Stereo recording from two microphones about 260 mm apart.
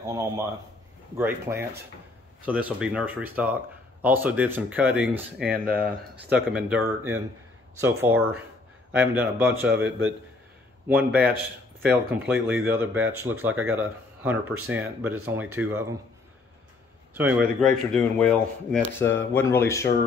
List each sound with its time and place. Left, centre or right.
1.1 s speech: centre
9.8 s a man's voice: right
10.9 s speech: centre
17.1 s speech: centre